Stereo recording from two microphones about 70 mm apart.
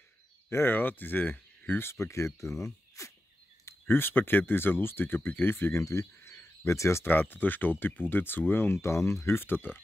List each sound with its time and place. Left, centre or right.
0.5 s speech: left
3.8 s speech: left
5.8 s speech: left
6.3 s cricket: left
7.1 s speech: left
8.8 s speech: left